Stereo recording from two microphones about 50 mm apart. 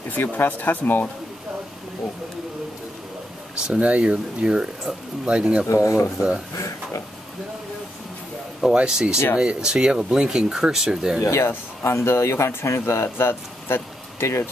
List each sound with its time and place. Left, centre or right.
0.1 s speech: left
3.5 s speech: centre
3.8 s speech: right
5.7 s speech: left
8.6 s speech: centre
11.2 s speech: left